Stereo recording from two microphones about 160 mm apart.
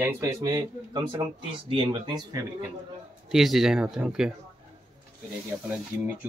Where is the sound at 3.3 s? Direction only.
Centre (ahead or behind).